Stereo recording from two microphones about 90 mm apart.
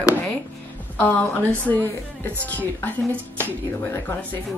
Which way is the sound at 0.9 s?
20° left (ahead or behind).